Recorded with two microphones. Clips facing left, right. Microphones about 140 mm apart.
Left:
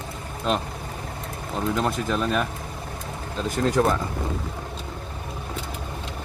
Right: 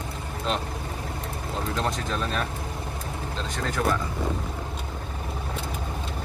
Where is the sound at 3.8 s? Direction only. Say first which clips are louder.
Left 3 dB; 35° left (ahead or behind).